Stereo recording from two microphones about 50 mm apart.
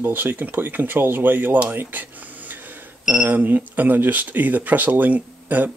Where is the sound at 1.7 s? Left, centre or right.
Right.